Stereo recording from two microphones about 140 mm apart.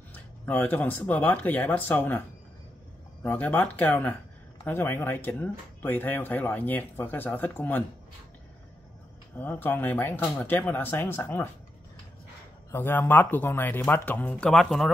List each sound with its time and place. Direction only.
0.1 s speech: 10° left (ahead or behind)
9.4 s speech: 15° left (ahead or behind)
12.7 s speech: 15° left (ahead or behind)